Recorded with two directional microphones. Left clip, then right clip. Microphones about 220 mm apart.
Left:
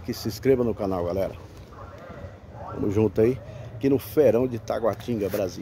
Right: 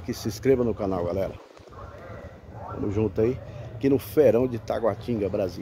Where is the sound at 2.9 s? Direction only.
40° left (ahead or behind).